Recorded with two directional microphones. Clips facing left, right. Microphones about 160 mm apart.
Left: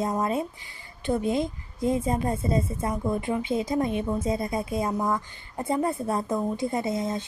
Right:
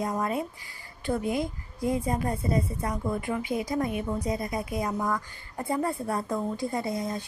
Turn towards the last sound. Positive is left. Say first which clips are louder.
# left 3 dB
turn(degrees=25)  # may be behind; listen again after turning